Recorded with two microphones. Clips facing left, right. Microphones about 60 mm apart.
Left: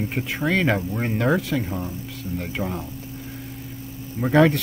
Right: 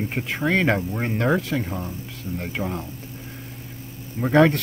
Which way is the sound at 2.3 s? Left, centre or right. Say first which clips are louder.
Even; centre.